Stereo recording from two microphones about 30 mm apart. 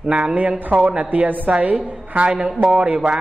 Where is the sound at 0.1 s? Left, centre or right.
Right.